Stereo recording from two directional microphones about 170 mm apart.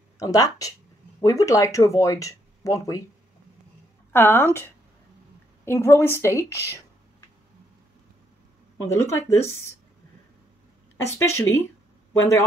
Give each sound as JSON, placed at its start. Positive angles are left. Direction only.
{"t": 0.2, "sound": "speech", "side_deg": 20}
{"t": 4.1, "sound": "a woman's voice", "side_deg": 15}
{"t": 5.7, "sound": "a woman's voice", "side_deg": 15}
{"t": 8.8, "sound": "a woman's voice", "side_deg": 15}
{"t": 11.1, "sound": "a woman's voice", "side_deg": 15}